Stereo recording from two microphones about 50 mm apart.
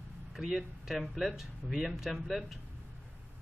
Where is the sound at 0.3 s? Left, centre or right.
Centre.